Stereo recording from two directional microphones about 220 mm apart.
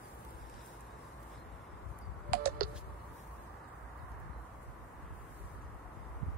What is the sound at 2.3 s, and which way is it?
Computer keyboard, 40° right (ahead or behind).